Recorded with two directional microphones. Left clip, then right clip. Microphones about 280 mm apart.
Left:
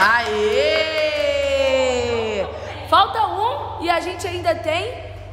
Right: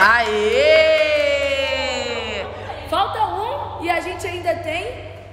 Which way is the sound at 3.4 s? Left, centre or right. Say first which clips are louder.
Left 2 dB; centre.